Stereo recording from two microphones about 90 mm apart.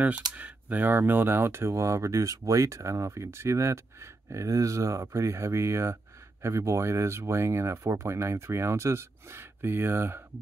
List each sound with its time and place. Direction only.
0.3 s speech: 20° right (ahead or behind)